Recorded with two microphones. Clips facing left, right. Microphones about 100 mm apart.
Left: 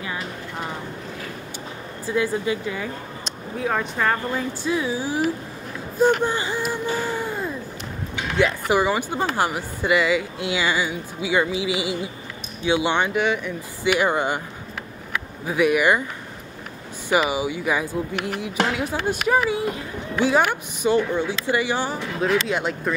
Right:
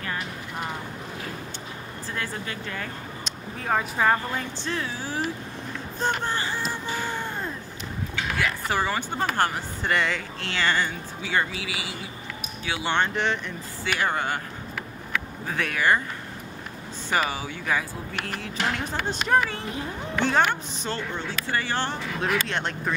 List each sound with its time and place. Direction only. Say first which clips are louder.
2.0 s speech: left 11 dB; 10° left (ahead or behind)
3.5 s speech: left 2 dB; centre (ahead or behind)
4.4 s speech: left 6 dB; 10° left (ahead or behind)
5.9 s a sound: left 8 dB; 10° left (ahead or behind)
8.4 s speech: left 8 dB; 20° left (ahead or behind)
15.4 s speech: left 7 dB; 10° left (ahead or behind)
17.2 s speech: left 6 dB; 15° left (ahead or behind)